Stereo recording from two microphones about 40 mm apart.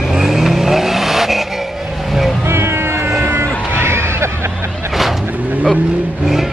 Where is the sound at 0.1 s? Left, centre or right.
Centre.